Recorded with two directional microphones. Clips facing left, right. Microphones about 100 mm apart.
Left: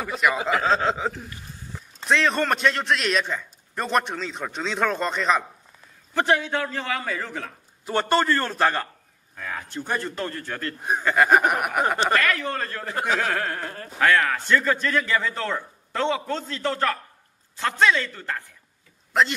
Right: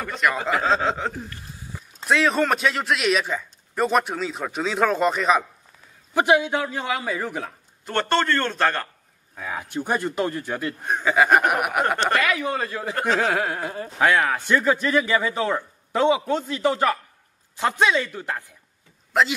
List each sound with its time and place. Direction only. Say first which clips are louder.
0.0 s a man's voice: even; 5° left (ahead or behind)
7.8 s a man's voice: even; 5° left (ahead or behind)
9.3 s a man's voice: right 3 dB; 10° right (ahead or behind)
10.8 s a man's voice: even; 5° left (ahead or behind)
12.9 s a man's voice: right 2 dB; 5° left (ahead or behind)
13.2 s a man's voice: right 3 dB; 10° right (ahead or behind)
19.1 s speech: right 1 dB; centre (ahead or behind)